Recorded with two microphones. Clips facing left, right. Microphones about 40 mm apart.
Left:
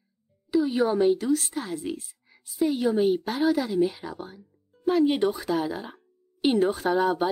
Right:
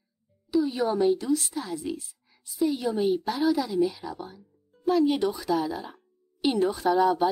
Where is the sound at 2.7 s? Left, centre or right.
Centre.